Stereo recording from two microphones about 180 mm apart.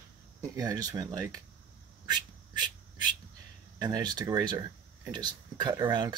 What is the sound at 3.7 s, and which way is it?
Speech, 20° right (ahead or behind).